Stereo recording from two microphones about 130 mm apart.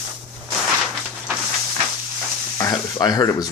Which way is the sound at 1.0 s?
5° right (ahead or behind).